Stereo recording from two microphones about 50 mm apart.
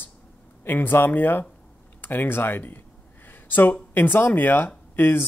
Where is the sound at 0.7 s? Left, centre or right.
Left.